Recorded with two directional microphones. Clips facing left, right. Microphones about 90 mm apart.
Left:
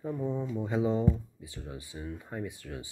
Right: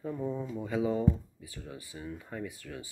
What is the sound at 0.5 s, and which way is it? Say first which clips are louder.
Speech: left 1 dB; 20° left (ahead or behind).